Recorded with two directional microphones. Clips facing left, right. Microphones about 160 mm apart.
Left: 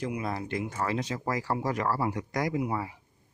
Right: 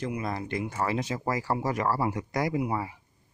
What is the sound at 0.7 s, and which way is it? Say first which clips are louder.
Speech: right 3 dB; 10° right (ahead or behind).